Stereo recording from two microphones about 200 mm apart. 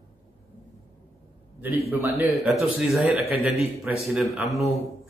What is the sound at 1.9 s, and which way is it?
Speech, 15° right (ahead or behind).